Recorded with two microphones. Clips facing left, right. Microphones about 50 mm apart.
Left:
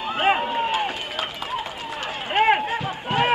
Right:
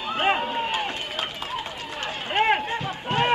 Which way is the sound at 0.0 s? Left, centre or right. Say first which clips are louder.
Left 2 dB; centre.